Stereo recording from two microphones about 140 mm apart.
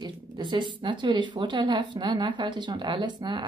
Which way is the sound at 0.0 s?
35° right (ahead or behind).